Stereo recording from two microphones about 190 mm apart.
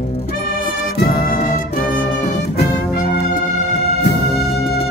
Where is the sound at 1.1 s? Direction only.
25° left (ahead or behind).